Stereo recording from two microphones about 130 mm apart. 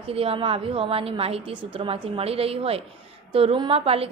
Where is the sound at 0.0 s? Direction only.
45° right (ahead or behind).